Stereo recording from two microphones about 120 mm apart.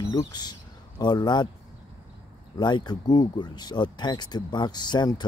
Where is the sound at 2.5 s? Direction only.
35° left (ahead or behind).